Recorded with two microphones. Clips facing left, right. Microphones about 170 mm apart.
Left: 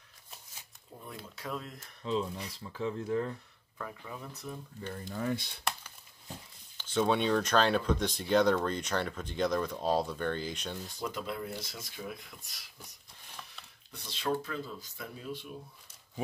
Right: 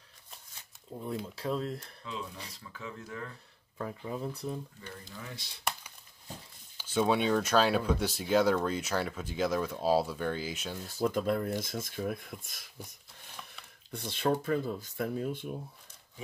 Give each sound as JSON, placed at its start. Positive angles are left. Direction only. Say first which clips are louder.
{"t": 0.9, "sound": "speech", "louder": "right 9 dB", "side_deg": -20}
{"t": 2.0, "sound": "speech", "louder": "left 9 dB", "side_deg": 30}
{"t": 3.7, "sound": "speech", "louder": "right 6 dB", "side_deg": -30}
{"t": 4.8, "sound": "speech", "louder": "left 10 dB", "side_deg": 50}
{"t": 5.6, "sound": "a sound", "louder": "even", "side_deg": 0}
{"t": 6.8, "sound": "speech", "louder": "right 1 dB", "side_deg": -10}
{"t": 11.1, "sound": "speech", "louder": "right 8 dB", "side_deg": -50}
{"t": 13.9, "sound": "speech", "louder": "right 3 dB", "side_deg": -50}